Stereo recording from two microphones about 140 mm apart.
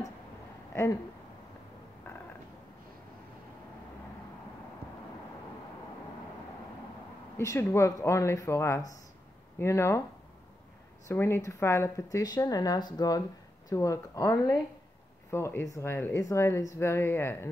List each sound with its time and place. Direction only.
7.3 s speech: 20° left (ahead or behind)
11.1 s speech: 15° left (ahead or behind)